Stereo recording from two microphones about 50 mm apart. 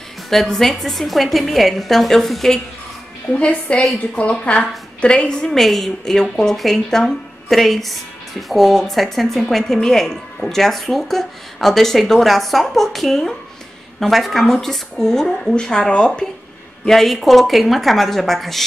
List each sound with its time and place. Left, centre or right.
0.3 s speech: centre
3.3 s a woman's voice: left
5.5 s speech: centre